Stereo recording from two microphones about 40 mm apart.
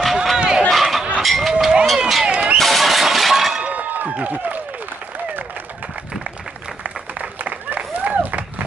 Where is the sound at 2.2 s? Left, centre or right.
Right.